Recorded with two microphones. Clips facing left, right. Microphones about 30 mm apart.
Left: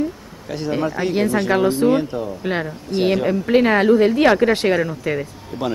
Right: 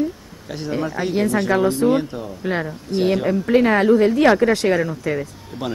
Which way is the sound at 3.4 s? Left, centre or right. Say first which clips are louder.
Even; left.